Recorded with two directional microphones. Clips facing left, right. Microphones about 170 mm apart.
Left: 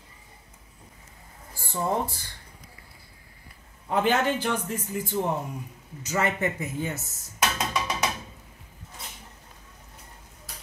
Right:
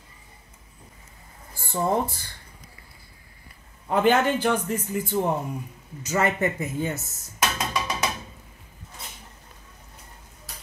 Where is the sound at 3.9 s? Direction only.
55° right (ahead or behind).